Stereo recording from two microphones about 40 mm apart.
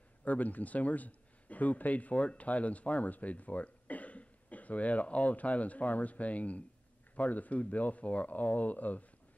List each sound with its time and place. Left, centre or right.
0.2 s speech: left